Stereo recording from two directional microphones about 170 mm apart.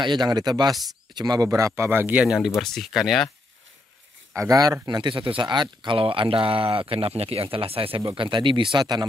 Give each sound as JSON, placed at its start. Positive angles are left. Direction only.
{"t": 0.0, "sound": "speech", "side_deg": -25}
{"t": 4.3, "sound": "speech", "side_deg": -20}